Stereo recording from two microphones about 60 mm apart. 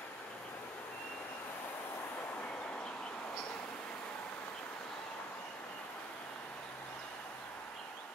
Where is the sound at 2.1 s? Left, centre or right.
Left.